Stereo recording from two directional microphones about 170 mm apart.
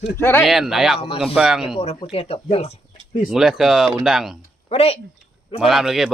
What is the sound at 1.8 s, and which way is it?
Speech, 35° left (ahead or behind).